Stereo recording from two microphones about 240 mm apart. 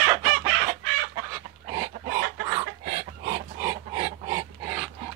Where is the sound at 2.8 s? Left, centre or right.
Right.